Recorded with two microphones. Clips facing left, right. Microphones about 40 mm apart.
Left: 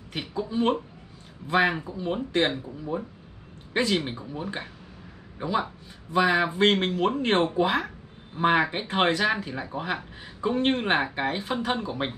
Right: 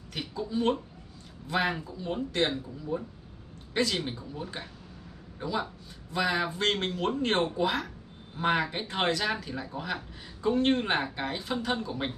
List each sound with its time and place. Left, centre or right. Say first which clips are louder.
0.1 s speech: left 3 dB; left